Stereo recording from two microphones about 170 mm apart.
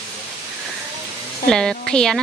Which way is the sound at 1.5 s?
5° left (ahead or behind).